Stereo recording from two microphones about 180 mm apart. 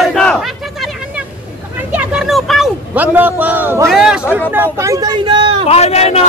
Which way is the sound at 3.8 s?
5° right (ahead or behind).